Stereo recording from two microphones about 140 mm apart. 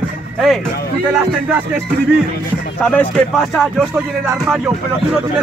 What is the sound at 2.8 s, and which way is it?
Speech, 5° left (ahead or behind).